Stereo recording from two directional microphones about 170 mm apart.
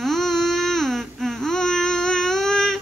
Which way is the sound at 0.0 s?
Centre (ahead or behind).